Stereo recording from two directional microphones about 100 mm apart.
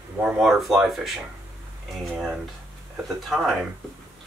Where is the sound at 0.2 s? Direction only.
Centre (ahead or behind).